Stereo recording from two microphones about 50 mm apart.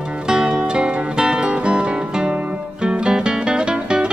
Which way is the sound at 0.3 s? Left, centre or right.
Centre.